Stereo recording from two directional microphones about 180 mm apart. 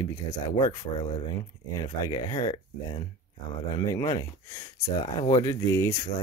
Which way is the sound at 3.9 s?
20° left (ahead or behind).